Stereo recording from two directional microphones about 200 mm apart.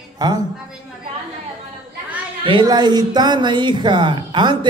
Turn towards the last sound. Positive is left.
turn(degrees=-25)  # may be behind; listen again after turning